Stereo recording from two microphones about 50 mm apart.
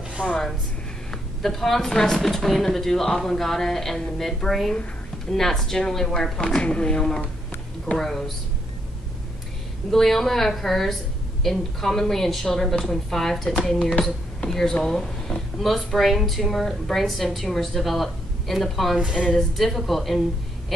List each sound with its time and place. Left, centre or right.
0.2 s speech: left
1.1 s speech: centre; by 7.1 s left
7.8 s speech: centre
9.8 s speech: centre
18.9 s a woman's voice: centre
19.3 s speech: centre